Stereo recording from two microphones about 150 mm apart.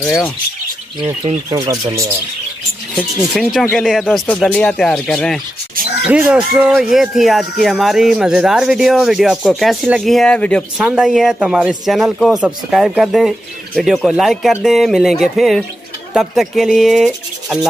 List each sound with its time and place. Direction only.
1.5 s speech: 20° right (ahead or behind)
3.0 s speech: 5° left (ahead or behind)
6.0 s speech: 10° right (ahead or behind); by 10.6 s 5° left (ahead or behind)
10.8 s speech: 5° right (ahead or behind)